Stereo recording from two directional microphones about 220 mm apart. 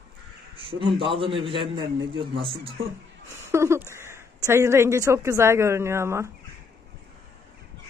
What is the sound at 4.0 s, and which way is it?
A woman's voice, 10° right (ahead or behind).